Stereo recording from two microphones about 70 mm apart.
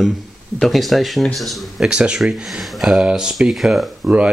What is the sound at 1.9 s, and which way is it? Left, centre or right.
Speech, centre.